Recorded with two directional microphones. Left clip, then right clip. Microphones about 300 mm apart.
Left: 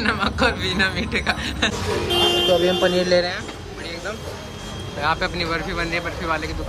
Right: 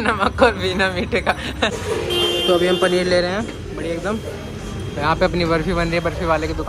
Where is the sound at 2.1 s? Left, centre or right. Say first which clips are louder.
Even; left.